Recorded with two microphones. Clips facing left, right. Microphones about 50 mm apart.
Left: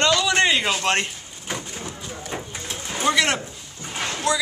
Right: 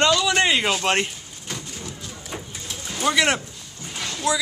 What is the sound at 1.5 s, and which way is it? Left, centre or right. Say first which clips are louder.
Bird: left 3 dB; left.